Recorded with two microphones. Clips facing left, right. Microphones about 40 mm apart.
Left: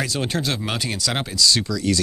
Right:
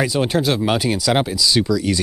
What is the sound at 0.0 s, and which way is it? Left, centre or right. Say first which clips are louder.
Speech: right 6 dB; centre.